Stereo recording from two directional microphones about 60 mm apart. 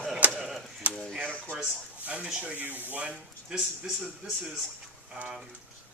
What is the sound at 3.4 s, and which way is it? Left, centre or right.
Speech, centre.